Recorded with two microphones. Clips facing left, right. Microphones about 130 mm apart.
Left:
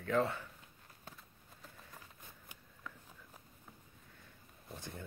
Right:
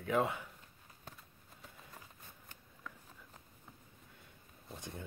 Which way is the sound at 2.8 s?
Centre (ahead or behind).